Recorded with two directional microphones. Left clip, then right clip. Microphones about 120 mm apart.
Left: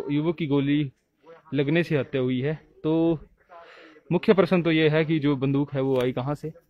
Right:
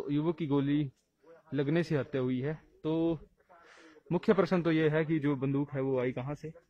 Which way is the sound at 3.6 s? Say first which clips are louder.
Left 7 dB; 20° left (ahead or behind).